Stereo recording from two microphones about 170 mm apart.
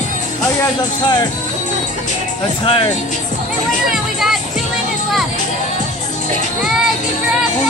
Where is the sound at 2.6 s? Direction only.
30° left (ahead or behind).